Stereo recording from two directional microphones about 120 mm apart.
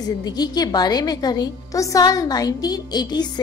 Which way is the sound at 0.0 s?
35° left (ahead or behind).